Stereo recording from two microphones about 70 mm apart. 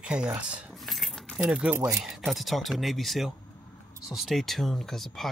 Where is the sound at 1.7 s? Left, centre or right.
Right.